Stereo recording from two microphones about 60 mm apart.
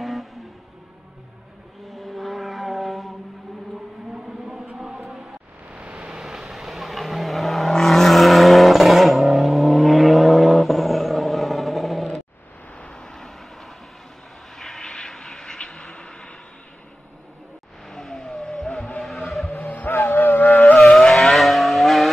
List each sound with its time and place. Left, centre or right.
0.0 s vehicle: centre
1.9 s vehicle: centre
4.1 s a sound: centre
5.7 s vehicle: centre
12.7 s vehicle: centre
17.8 s vehicle: centre
19.5 s music: left
20.8 s vehicle: centre